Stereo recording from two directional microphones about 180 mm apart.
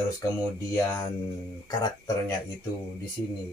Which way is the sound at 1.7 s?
20° left (ahead or behind).